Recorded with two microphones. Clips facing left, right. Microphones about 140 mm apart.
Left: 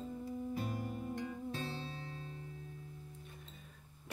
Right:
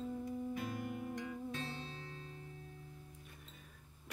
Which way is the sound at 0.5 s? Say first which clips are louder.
Left 1 dB; 35° left (ahead or behind).